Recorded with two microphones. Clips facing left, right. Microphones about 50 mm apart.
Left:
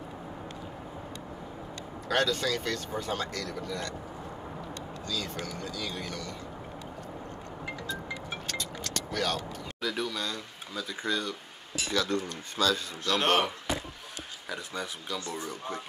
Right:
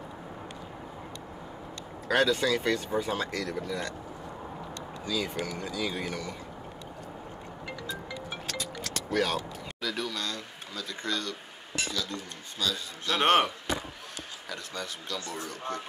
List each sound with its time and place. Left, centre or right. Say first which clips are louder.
2.0 s speech: right 3 dB; centre
5.0 s speech: right 4 dB; centre
8.8 s vehicle: right 3 dB; centre
9.8 s speech: left 1 dB; centre
11.9 s speech: left 6 dB; left
13.0 s speech: right 3 dB; right
14.5 s speech: left 2 dB; centre